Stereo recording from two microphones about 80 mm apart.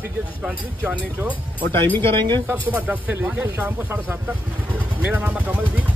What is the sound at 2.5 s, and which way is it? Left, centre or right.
Speech, right.